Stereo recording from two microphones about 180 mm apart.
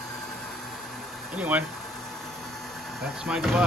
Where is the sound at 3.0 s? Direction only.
5° right (ahead or behind).